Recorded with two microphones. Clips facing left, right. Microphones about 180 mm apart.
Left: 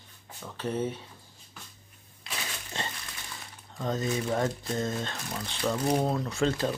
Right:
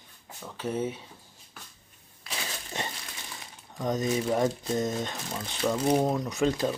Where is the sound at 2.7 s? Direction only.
15° right (ahead or behind).